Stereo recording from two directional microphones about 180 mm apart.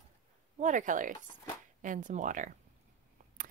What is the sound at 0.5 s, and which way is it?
Speech, 45° right (ahead or behind).